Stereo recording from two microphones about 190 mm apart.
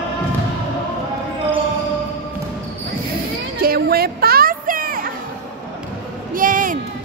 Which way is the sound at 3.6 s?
55° right (ahead or behind).